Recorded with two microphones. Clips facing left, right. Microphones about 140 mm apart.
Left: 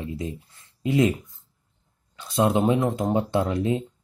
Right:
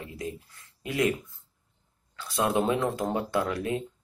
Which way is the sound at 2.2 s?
20° left (ahead or behind).